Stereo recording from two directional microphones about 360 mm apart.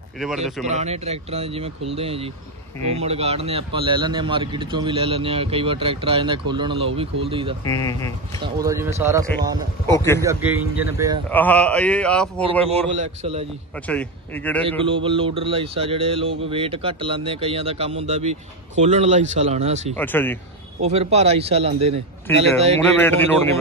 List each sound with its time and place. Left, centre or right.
0.2 s speech: centre
0.7 s speech: centre
7.6 s speech: centre
8.4 s speech: centre
9.9 s speech: centre
10.2 s speech: centre
12.9 s speech: centre
13.8 s speech: centre
14.7 s speech: centre
20.0 s speech: centre
20.8 s speech: centre
22.8 s speech: centre